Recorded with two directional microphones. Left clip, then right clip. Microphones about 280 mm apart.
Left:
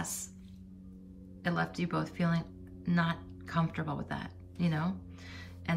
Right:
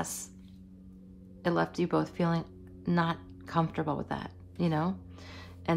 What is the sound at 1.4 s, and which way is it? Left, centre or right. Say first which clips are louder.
Speech: right 5 dB; centre.